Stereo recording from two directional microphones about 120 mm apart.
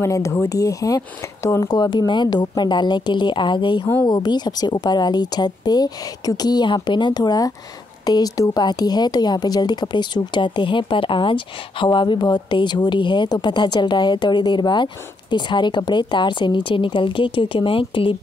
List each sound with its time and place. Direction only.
0.0 s a woman's voice: 25° left (ahead or behind); by 18.1 s 45° left (ahead or behind)